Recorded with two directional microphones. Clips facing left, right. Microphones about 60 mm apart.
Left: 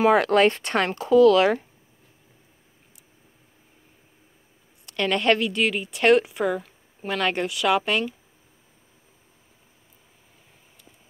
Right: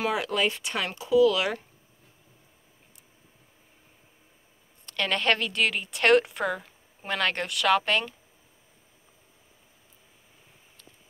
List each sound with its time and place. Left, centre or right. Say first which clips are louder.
0.1 s speech: left 9 dB; left
5.0 s speech: left 5 dB; centre